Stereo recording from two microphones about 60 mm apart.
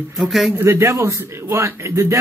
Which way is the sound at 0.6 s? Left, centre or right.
Right.